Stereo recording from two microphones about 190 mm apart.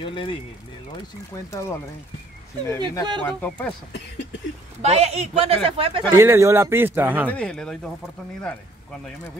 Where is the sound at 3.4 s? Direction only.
10° left (ahead or behind).